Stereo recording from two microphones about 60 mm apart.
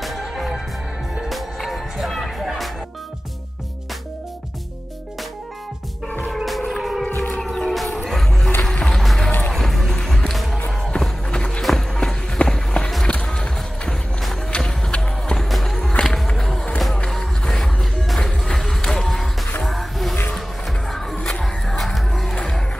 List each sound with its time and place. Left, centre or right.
0.0 s music: centre
6.2 s music: centre
7.2 s music: centre
7.7 s music: centre
8.8 s boat: centre
9.5 s music: centre
15.3 s music: centre
21.4 s music: centre